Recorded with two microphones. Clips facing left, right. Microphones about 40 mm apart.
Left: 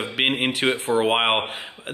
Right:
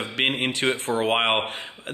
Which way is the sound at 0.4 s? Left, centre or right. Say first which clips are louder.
Left 2 dB; centre.